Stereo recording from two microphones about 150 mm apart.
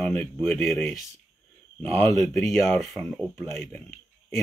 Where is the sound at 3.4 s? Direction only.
15° left (ahead or behind).